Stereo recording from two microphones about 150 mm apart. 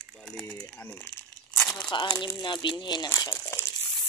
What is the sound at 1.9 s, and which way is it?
Speech, 30° left (ahead or behind).